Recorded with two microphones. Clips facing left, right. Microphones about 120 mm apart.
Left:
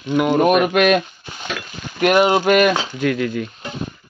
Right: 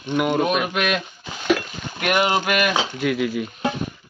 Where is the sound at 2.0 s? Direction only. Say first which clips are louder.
Left 6 dB; 30° left (ahead or behind).